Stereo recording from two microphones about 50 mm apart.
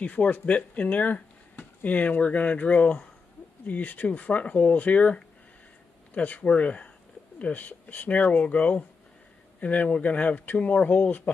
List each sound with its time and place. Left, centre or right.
0.0 s speech: left